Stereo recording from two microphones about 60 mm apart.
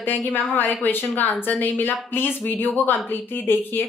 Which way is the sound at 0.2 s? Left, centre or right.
Left.